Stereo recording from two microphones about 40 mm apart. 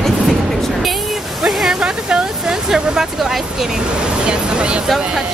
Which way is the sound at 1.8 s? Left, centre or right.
Right.